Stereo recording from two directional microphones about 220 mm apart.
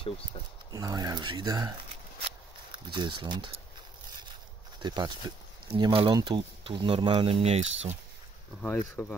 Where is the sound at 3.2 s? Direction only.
20° right (ahead or behind).